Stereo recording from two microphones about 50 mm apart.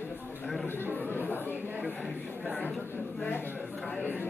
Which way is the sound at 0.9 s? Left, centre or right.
Left.